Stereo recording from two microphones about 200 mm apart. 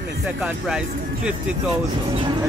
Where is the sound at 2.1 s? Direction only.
25° right (ahead or behind).